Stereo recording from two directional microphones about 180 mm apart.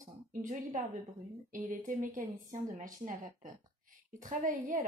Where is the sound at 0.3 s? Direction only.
45° right (ahead or behind).